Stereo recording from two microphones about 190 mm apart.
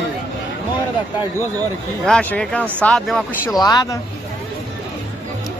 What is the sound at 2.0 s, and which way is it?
Speech, 5° left (ahead or behind).